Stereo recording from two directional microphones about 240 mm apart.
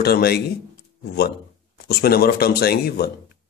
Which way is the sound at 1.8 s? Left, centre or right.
Left.